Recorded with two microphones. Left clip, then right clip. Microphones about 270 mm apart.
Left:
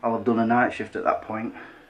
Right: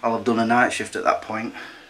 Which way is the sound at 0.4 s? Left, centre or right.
Centre.